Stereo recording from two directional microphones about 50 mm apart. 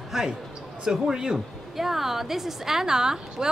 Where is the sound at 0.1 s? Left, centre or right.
Centre.